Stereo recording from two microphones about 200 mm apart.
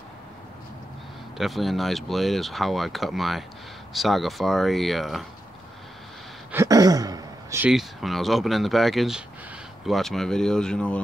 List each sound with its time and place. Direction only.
1.4 s speech: centre (ahead or behind)
6.5 s a sound: 15° right (ahead or behind)
7.6 s speech: centre (ahead or behind)